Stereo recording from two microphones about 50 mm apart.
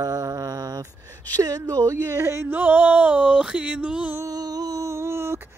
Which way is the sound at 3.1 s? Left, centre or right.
Right.